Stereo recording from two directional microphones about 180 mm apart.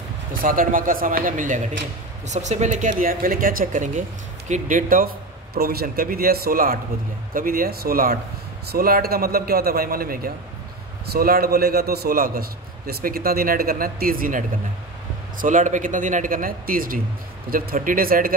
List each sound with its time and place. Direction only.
0.3 s a man's voice: 50° right (ahead or behind)